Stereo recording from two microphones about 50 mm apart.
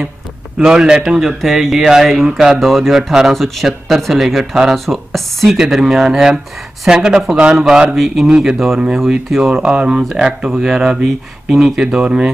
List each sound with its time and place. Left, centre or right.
0.7 s speech: centre
1.2 s speech: centre
2.6 s speech: centre
5.6 s speech: centre
7.9 s speech: centre
8.3 s speech: centre
8.5 s speech: centre
9.7 s speech: right